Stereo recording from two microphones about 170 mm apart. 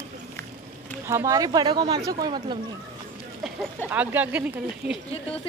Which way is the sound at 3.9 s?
10° right (ahead or behind).